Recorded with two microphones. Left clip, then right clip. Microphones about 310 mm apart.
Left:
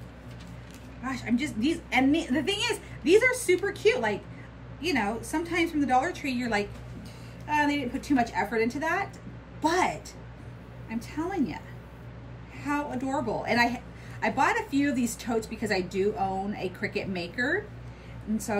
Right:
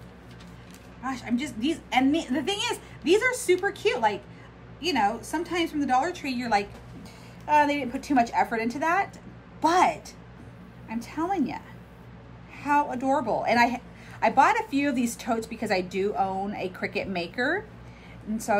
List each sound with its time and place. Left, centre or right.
1.0 s a woman's voice: centre
12.6 s a woman's voice: right